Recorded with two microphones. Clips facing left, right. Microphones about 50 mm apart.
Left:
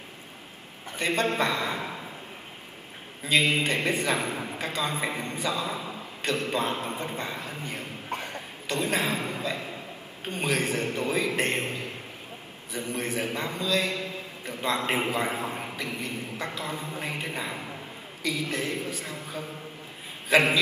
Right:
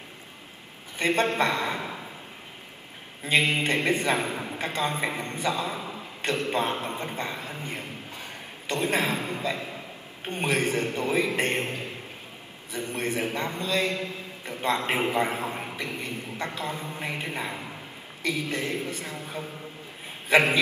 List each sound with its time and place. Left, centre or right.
0.9 s a man's voice: right
3.3 s a man's voice: right
8.1 s ping: left
8.6 s a man's voice: right
10.2 s a man's voice: right